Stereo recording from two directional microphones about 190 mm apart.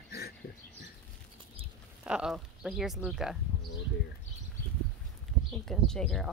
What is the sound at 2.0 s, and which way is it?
Speech, 5° right (ahead or behind).